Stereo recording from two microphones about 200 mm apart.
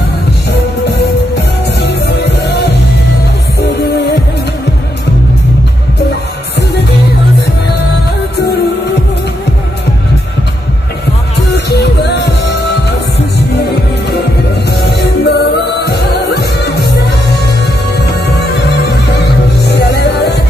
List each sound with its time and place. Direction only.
0.5 s music: 55° left (ahead or behind)
11.5 s music: 55° left (ahead or behind)
14.8 s music: 55° left (ahead or behind)
17.9 s music: 55° left (ahead or behind)